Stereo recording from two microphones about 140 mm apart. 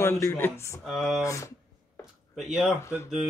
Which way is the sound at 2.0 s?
Centre (ahead or behind).